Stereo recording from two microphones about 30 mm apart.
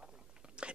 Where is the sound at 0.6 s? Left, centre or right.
Right.